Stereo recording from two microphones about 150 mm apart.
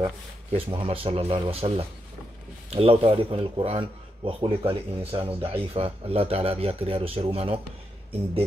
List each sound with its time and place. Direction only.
0.0 s speech: 35° right (ahead or behind)